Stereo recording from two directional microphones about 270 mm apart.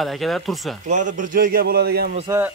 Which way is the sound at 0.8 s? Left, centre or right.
Right.